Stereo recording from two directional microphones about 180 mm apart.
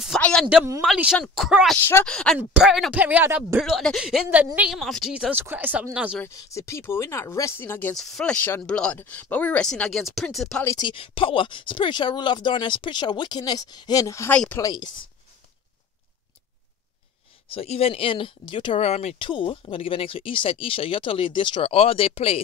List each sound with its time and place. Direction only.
0.0 s a sound: 5° left (ahead or behind)
0.7 s speech: 5° right (ahead or behind)
1.8 s speech: 10° left (ahead or behind); by 6.1 s 5° right (ahead or behind)
6.1 s speech: 15° left (ahead or behind)
10.6 s speech: 15° left (ahead or behind)
10.9 s speech: 30° left (ahead or behind)
17.5 s speech: 30° left (ahead or behind)